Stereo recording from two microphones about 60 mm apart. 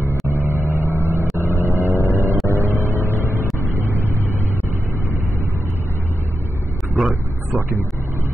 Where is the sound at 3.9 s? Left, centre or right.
Right.